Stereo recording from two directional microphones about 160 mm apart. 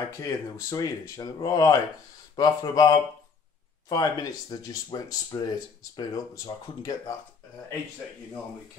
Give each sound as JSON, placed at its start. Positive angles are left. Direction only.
{"t": 0.2, "sound": "speech", "side_deg": 20}